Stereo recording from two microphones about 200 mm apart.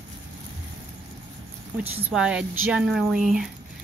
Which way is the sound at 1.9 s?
5° right (ahead or behind).